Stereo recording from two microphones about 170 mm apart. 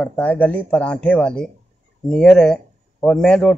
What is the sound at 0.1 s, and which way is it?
Speech, 10° left (ahead or behind).